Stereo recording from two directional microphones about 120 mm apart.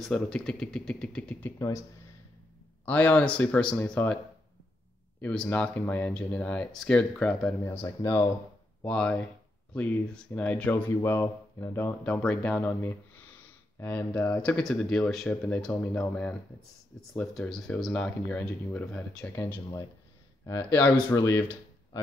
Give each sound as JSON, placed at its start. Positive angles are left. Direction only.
{"t": 0.0, "sound": "speech", "side_deg": 5}
{"t": 1.6, "sound": "speech", "side_deg": 25}
{"t": 2.8, "sound": "speech", "side_deg": 15}
{"t": 5.2, "sound": "speech", "side_deg": 10}
{"t": 7.6, "sound": "speech", "side_deg": 20}
{"t": 8.8, "sound": "speech", "side_deg": 10}
{"t": 12.0, "sound": "speech", "side_deg": 10}
{"t": 17.2, "sound": "speech", "side_deg": 0}
{"t": 17.9, "sound": "speech", "side_deg": 10}